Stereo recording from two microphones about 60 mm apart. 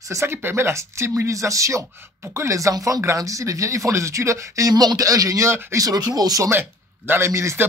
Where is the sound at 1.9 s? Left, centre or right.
Right.